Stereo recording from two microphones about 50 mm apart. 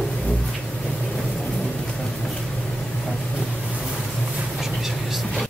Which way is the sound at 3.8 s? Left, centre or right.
Centre.